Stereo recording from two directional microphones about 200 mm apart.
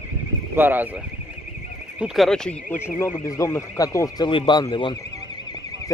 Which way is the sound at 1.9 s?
Centre (ahead or behind).